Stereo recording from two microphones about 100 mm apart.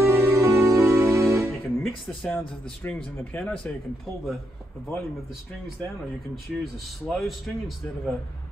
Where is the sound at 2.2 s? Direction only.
20° left (ahead or behind).